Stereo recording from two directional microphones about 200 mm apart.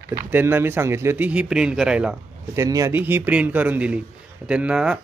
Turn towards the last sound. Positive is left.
turn(degrees=-5)  # may be behind; listen again after turning